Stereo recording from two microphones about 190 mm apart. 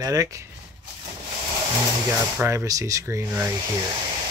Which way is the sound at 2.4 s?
15° right (ahead or behind).